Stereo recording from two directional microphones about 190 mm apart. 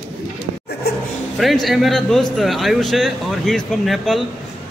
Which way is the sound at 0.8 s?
55° left (ahead or behind).